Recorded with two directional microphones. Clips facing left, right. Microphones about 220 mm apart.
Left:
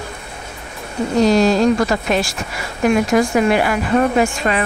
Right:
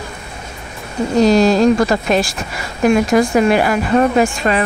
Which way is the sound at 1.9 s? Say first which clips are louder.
Right 3 dB; 35° right (ahead or behind).